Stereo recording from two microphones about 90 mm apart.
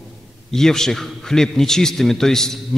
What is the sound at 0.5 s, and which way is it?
A man's voice, 5° left (ahead or behind).